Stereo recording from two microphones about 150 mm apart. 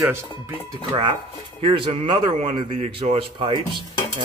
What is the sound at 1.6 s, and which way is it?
Speech, 35° right (ahead or behind).